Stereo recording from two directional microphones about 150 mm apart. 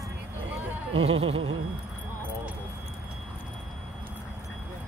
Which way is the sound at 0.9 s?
40° right (ahead or behind).